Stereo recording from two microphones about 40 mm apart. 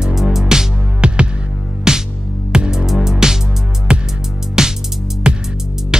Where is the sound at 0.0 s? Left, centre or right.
Centre.